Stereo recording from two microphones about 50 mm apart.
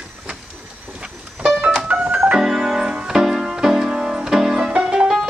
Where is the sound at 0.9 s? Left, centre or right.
Centre.